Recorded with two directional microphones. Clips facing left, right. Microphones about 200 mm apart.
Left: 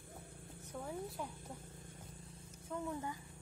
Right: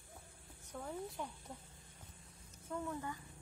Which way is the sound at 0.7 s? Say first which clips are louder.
Left 1 dB; 5° left (ahead or behind).